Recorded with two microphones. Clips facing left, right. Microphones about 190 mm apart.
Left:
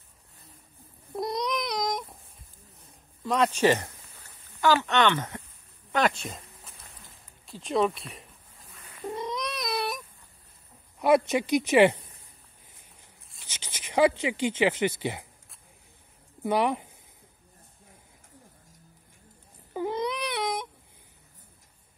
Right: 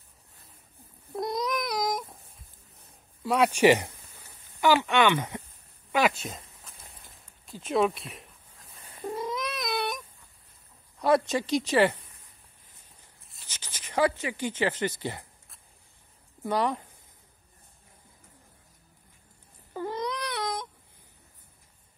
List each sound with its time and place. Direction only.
1.1 s a sound: centre (ahead or behind)
3.3 s speech: 10° right (ahead or behind)
5.9 s a sound: 5° right (ahead or behind)
7.4 s speech: centre (ahead or behind)
9.0 s baby cry: 5° right (ahead or behind)
11.0 s speech: 20° left (ahead or behind)
13.5 s speech: 20° left (ahead or behind)
16.4 s speech: 15° left (ahead or behind)
19.7 s baby cry: 15° left (ahead or behind)